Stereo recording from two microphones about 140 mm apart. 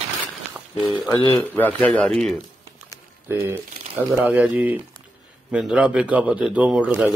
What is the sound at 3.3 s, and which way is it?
A man's voice, 15° right (ahead or behind).